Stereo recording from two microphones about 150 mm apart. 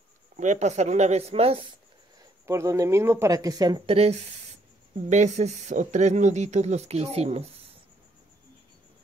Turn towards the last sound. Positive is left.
turn(degrees=-45)  # may be behind; listen again after turning